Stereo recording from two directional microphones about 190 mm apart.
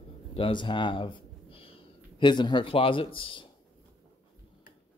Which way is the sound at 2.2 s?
25° left (ahead or behind).